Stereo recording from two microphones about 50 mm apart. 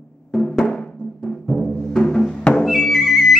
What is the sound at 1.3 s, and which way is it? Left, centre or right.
Timpani, centre.